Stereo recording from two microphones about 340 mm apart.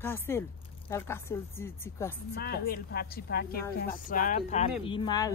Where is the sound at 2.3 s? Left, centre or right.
Left.